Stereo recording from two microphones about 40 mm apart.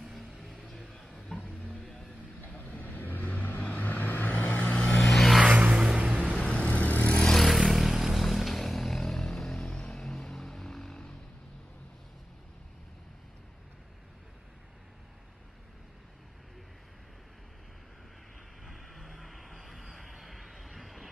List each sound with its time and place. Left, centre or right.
0.0 s vehicle: centre
1.3 s a sound: left
1.8 s vehicle: centre
2.5 s vehicle: left
5.0 s vehicle: centre
5.5 s vehicle: right
5.8 s music: centre
6.4 s vehicle: left
7.1 s vehicle: centre
7.3 s vehicle: centre
9.8 s a sound: left
10.0 s vehicle: centre
18.7 s vehicle: centre